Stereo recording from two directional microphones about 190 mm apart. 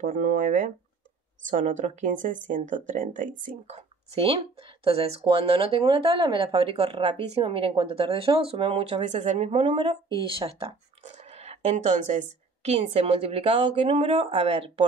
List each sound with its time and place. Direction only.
0.0 s speech: 45° right (ahead or behind)